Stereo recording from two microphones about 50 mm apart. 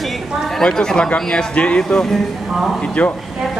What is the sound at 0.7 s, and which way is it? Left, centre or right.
Speech, centre.